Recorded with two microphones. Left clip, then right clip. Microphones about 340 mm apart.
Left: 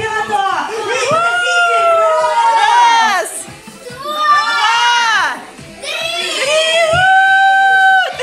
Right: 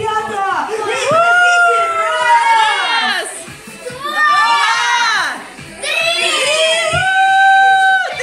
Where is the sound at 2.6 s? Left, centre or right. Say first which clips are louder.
Left 5 dB; centre.